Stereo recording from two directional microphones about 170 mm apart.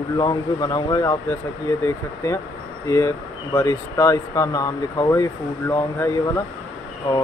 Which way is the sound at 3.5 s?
20° left (ahead or behind).